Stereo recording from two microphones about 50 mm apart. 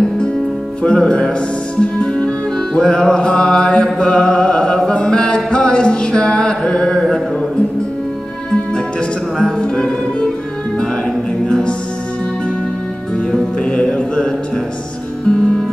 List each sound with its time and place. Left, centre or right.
0.8 s music: centre
9.4 s music: centre
11.4 s music: centre
13.3 s music: left